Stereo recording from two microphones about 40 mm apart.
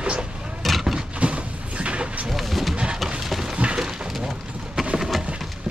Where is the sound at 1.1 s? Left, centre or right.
Right.